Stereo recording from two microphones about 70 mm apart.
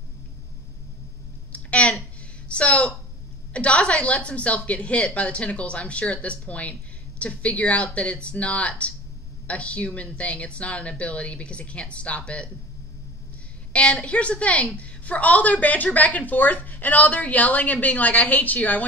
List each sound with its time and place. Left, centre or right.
1.5 s a sound: centre
3.5 s a woman's voice: centre
13.7 s a woman's voice: centre